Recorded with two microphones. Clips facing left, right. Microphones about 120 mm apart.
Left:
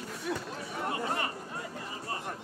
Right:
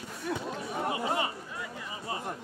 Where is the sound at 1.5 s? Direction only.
45° left (ahead or behind).